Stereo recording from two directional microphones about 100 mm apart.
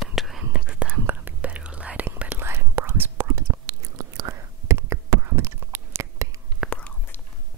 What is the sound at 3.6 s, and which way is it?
Whispering, 35° right (ahead or behind).